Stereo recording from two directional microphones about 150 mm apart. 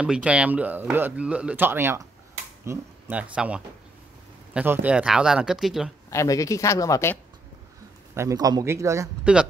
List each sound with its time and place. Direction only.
0.0 s speech: 5° right (ahead or behind)
6.0 s speech: 20° left (ahead or behind)
8.1 s speech: 20° right (ahead or behind)
9.2 s speech: 5° right (ahead or behind)